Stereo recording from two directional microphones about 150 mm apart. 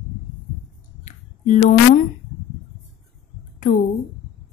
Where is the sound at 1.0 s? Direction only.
55° left (ahead or behind).